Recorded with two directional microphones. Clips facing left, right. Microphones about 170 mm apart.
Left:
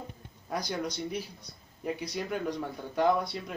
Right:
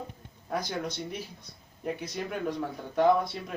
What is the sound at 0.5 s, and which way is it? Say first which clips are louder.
Speech: right 1 dB; centre (ahead or behind).